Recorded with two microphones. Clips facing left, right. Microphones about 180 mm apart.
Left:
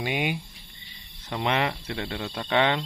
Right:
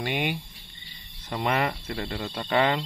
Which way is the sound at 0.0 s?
5° left (ahead or behind).